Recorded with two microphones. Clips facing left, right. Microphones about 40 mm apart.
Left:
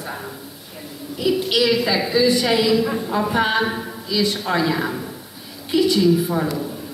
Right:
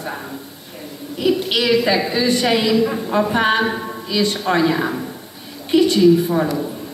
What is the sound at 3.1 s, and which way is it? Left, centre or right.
Speech, centre.